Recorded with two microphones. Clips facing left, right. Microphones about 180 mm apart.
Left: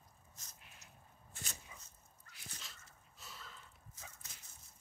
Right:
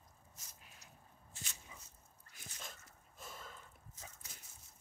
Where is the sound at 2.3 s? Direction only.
50° right (ahead or behind).